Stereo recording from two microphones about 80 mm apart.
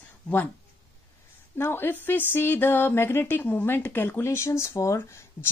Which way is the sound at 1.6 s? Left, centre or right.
Left.